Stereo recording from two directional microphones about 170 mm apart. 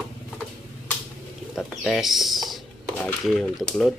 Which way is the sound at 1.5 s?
Centre (ahead or behind).